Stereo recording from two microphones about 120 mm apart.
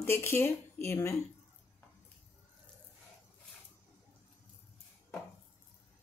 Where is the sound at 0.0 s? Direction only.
20° left (ahead or behind).